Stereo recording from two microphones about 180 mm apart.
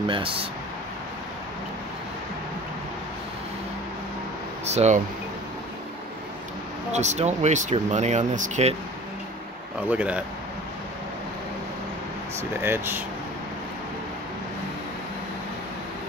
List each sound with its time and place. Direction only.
0.1 s speech: 30° right (ahead or behind)
4.6 s speech: 40° right (ahead or behind)
6.9 s speech: 40° right (ahead or behind)
9.8 s speech: 5° right (ahead or behind)
12.4 s speech: 15° right (ahead or behind)